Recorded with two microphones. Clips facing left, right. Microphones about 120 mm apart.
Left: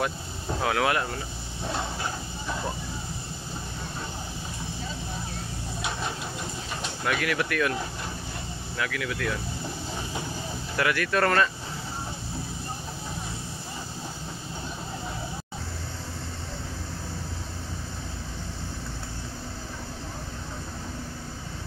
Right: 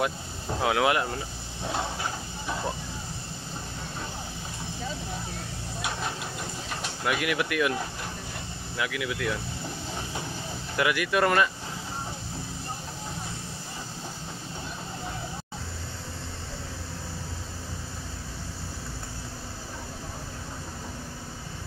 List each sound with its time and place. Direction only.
0.6 s speech: 20° right (ahead or behind)
7.1 s speech: 15° right (ahead or behind)
8.7 s speech: 15° right (ahead or behind)
10.8 s speech: 15° right (ahead or behind)